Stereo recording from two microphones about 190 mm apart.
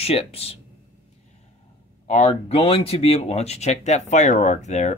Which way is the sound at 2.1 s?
35° left (ahead or behind).